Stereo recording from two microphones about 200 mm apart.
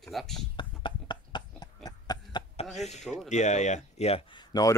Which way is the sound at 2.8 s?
35° left (ahead or behind).